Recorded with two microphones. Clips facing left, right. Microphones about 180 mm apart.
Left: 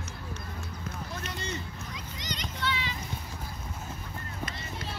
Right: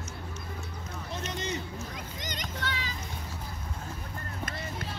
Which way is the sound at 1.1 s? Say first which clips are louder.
Right 5 dB; 20° right (ahead or behind).